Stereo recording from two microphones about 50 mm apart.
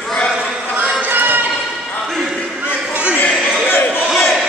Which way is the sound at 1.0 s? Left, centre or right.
Right.